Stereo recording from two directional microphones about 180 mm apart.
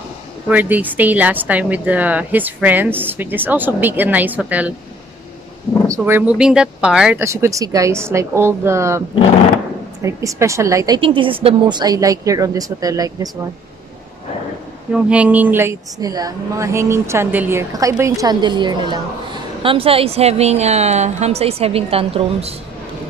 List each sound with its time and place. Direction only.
0.5 s a woman's voice: 10° right (ahead or behind)
5.9 s a woman's voice: 15° right (ahead or behind)
10.0 s a woman's voice: 15° right (ahead or behind)
11.0 s a woman's voice: 30° right (ahead or behind)
14.9 s a woman's voice: 5° right (ahead or behind); by 22.5 s 30° right (ahead or behind)